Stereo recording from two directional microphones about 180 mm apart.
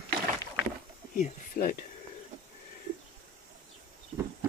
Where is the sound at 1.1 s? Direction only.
50° left (ahead or behind).